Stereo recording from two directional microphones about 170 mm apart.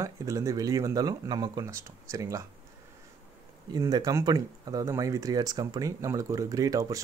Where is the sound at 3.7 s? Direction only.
20° right (ahead or behind).